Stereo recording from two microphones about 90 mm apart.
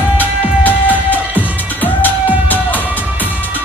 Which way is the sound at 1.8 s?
20° left (ahead or behind).